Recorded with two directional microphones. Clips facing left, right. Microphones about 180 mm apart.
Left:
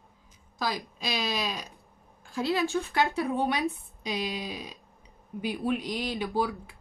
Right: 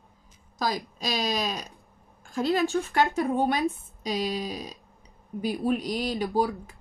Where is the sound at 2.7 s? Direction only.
45° right (ahead or behind).